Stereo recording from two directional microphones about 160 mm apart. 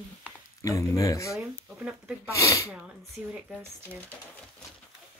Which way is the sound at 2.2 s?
20° left (ahead or behind).